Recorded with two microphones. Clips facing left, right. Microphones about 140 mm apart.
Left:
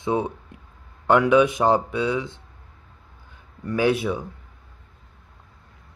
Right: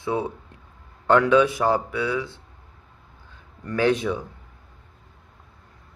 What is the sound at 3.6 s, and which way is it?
Speech, 10° left (ahead or behind).